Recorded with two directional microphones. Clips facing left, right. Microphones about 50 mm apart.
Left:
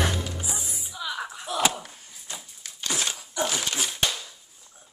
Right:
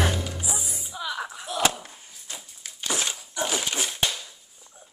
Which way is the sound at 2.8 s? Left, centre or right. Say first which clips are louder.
Right 1 dB; centre.